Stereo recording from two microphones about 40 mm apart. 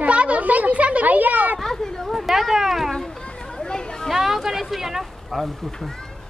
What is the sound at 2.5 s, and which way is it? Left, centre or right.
Speech, centre.